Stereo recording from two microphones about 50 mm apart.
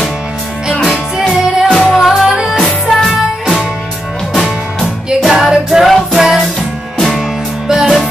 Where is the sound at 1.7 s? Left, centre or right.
Centre.